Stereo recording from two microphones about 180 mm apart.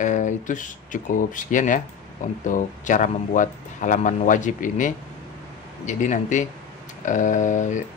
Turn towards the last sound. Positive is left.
turn(degrees=40)  # may be behind; listen again after turning